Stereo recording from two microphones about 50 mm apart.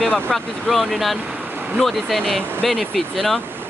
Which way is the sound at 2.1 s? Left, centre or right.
Centre.